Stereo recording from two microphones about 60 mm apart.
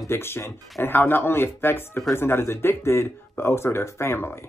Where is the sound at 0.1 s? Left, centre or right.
Left.